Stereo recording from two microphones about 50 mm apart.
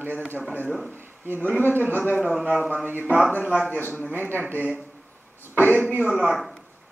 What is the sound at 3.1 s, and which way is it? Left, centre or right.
Speech, left.